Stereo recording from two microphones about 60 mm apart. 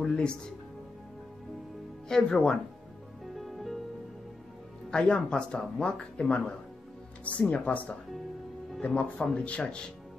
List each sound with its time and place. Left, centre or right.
0.0 s speech: centre
2.0 s speech: centre
3.3 s music: centre
4.9 s speech: centre